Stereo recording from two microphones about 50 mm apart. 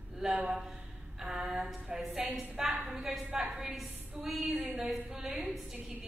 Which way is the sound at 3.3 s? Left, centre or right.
Right.